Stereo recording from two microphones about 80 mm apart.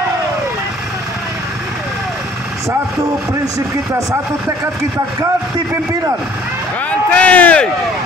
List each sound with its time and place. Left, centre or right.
3.5 s speech: right
6.9 s speech: centre